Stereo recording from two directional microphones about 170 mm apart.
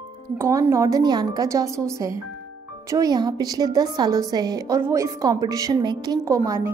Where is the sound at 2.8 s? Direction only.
20° right (ahead or behind).